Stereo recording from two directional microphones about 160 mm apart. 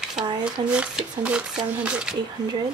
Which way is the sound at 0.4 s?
5° right (ahead or behind).